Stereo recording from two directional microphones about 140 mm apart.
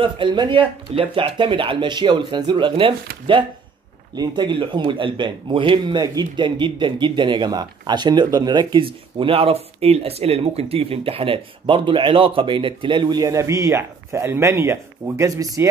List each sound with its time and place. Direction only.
0.0 s a man's voice: 35° right (ahead or behind)
4.1 s a man's voice: 30° right (ahead or behind)